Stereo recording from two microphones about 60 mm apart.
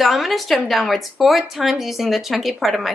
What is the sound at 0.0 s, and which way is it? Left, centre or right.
A woman's voice, centre.